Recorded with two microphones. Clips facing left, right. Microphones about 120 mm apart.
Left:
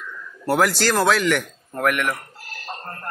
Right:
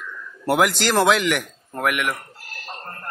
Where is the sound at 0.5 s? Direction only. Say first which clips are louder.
Even; 15° right (ahead or behind).